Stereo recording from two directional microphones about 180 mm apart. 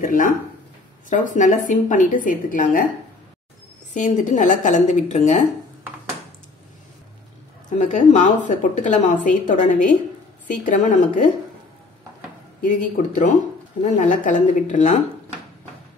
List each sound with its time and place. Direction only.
0.0 s a woman's voice: 45° left (ahead or behind)
3.9 s a woman's voice: 45° left (ahead or behind)
7.7 s a woman's voice: 40° left (ahead or behind)
12.6 s a woman's voice: 45° left (ahead or behind)